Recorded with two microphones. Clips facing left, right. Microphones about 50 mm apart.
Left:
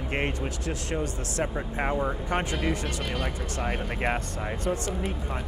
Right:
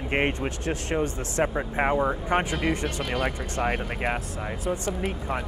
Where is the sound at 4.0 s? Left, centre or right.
Centre.